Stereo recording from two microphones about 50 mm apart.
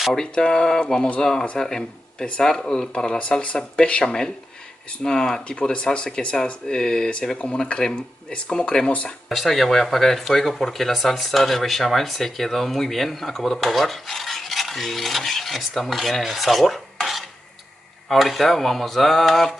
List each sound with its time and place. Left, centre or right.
0.1 s speech: centre
4.0 s speech: centre
5.6 s speech: left
9.3 s speech: centre